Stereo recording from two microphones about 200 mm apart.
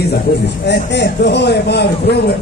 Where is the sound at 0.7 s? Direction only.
60° left (ahead or behind).